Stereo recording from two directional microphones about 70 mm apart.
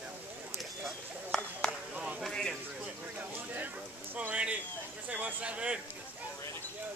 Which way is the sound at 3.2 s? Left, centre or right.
Right.